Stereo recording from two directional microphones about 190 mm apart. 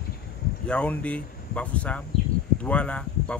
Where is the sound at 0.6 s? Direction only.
5° left (ahead or behind).